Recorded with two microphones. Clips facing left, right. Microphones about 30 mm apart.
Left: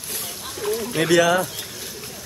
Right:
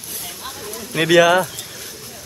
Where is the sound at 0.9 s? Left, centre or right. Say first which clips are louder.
Right 5 dB; centre.